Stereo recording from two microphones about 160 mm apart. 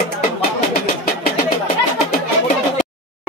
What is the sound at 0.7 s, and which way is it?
Vehicle, 70° left (ahead or behind).